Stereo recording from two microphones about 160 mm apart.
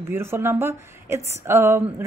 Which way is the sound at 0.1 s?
15° right (ahead or behind).